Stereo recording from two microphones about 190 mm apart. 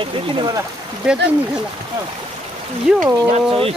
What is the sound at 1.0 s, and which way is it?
Speech, 5° right (ahead or behind).